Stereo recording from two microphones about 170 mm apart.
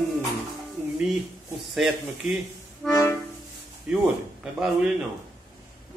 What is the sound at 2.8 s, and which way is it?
Music, 20° left (ahead or behind).